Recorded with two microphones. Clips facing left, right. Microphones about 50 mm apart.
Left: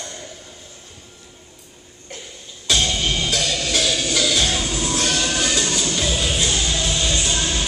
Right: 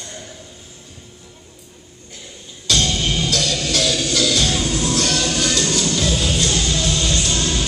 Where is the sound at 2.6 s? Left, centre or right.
Centre.